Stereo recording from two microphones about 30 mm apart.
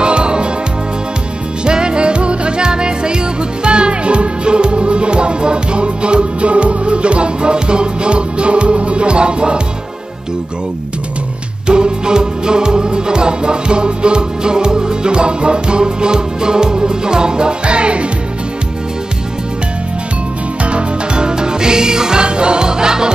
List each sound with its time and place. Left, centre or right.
0.0 s music: right
1.6 s music: right
11.6 s music: right
20.6 s music: right
22.2 s music: right